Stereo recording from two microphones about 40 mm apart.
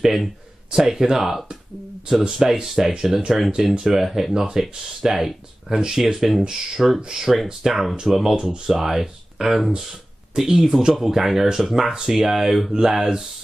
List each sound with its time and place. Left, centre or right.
0.0 s speech: centre
7.6 s speech: centre